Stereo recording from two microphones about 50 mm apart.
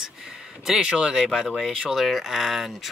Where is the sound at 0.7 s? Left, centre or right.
Centre.